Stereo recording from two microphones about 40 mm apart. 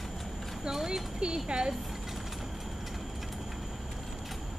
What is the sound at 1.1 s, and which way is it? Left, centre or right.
Speech, right.